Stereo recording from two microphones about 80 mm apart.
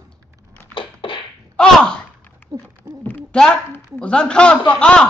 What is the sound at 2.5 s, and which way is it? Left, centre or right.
Hoot, right.